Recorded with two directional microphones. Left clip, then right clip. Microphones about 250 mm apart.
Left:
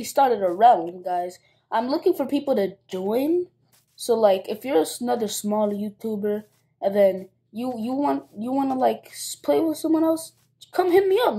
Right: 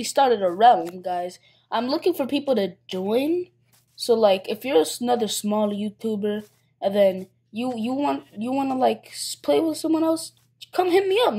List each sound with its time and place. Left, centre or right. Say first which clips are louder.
0.0 s a woman's voice: even; right